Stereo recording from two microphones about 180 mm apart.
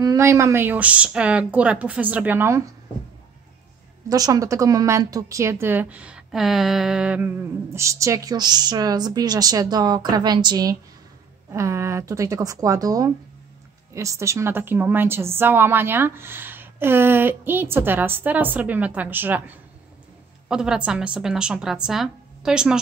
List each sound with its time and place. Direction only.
0.0 s a woman's voice: 15° right (ahead or behind)
4.1 s a woman's voice: 20° right (ahead or behind); by 22.8 s 5° right (ahead or behind)